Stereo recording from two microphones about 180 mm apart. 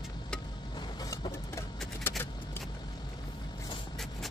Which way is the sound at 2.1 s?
10° left (ahead or behind).